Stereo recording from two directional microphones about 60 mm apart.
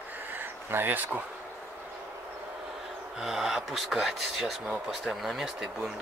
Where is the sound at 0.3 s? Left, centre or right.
Right.